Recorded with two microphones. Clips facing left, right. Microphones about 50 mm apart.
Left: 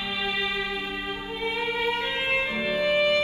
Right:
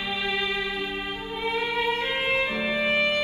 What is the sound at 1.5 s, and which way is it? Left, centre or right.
Music, right.